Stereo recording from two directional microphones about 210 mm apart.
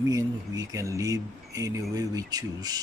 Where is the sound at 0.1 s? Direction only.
15° right (ahead or behind).